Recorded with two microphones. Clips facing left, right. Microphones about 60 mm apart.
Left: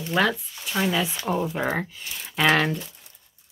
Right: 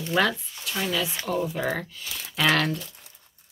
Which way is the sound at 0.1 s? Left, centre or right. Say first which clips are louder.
Left 1 dB; centre.